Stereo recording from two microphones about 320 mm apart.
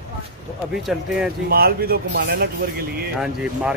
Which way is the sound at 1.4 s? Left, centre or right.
Right.